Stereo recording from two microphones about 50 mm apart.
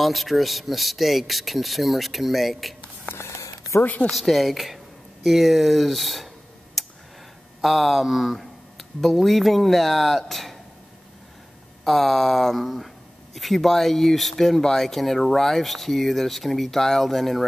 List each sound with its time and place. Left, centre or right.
0.0 s speech: centre
3.2 s a sound: left
3.8 s speech: left
4.1 s speech: centre
6.8 s tick: centre
7.6 s speech: centre
11.8 s speech: centre